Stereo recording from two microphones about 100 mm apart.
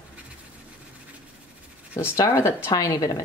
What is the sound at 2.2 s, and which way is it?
Speech, 30° left (ahead or behind).